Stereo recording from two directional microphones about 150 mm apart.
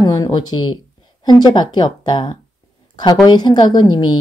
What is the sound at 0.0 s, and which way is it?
Speech, 25° left (ahead or behind).